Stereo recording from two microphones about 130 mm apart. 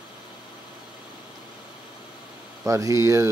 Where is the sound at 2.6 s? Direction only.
25° right (ahead or behind).